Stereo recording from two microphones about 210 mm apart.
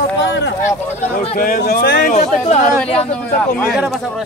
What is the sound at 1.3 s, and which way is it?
Speech, 45° left (ahead or behind).